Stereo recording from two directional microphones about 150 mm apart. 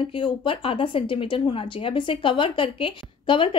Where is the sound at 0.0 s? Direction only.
35° left (ahead or behind).